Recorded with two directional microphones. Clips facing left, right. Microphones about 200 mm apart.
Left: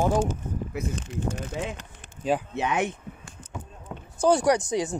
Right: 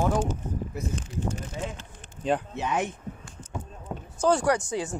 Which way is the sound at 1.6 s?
85° left.